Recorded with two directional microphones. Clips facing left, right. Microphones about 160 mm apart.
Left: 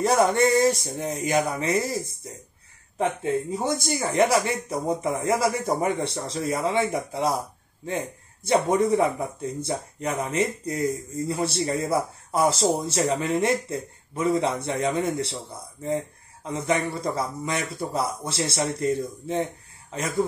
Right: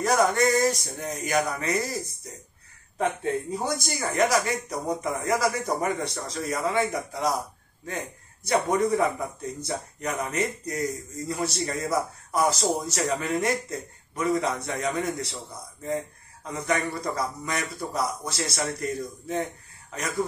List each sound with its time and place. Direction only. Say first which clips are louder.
0.0 s speech: left 2 dB; 25° left (ahead or behind)
3.5 s speech: left 3 dB; 25° left (ahead or behind)
8.5 s speech: left 3 dB; 25° left (ahead or behind)
16.4 s speech: left 2 dB; 25° left (ahead or behind)